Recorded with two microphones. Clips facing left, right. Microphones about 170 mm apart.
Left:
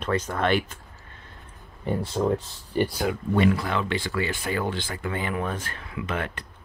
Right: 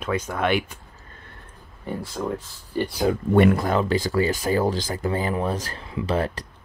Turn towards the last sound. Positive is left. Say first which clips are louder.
# right 6 dB
turn(degrees=-35)  # may be behind; listen again after turning